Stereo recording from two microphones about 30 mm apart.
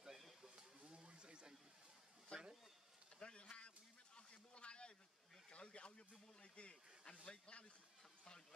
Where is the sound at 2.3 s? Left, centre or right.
Left.